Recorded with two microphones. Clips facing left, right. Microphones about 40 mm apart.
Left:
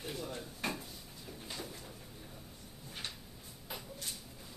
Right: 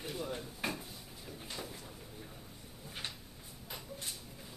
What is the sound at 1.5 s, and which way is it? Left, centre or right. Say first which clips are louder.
Bird: even; centre.